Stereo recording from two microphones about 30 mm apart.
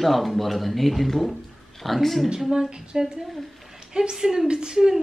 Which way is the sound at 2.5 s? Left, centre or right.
Right.